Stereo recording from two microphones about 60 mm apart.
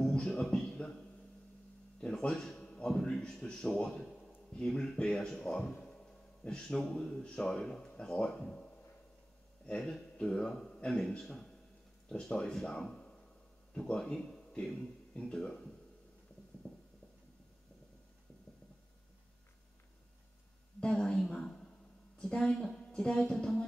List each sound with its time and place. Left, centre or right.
0.1 s music: centre
2.0 s a man's voice: centre
16.6 s a sound: left
20.8 s a man's voice: centre